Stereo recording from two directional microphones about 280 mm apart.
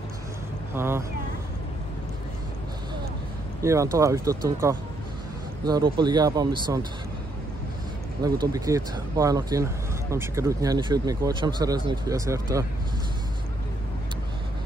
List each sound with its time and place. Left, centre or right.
0.7 s speech: centre
3.6 s speech: centre
8.2 s speech: centre